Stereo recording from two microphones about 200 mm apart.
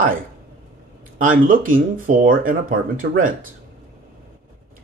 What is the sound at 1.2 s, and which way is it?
Speech, 40° right (ahead or behind).